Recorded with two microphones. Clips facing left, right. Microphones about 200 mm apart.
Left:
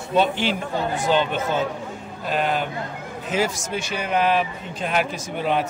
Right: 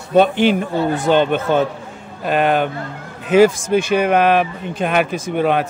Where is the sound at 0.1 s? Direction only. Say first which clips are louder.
Right 8 dB; 55° right (ahead or behind).